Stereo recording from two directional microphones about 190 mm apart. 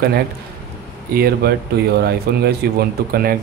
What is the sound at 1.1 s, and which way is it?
Speech, 55° right (ahead or behind).